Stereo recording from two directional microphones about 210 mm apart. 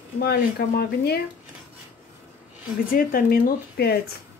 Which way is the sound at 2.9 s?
45° left (ahead or behind).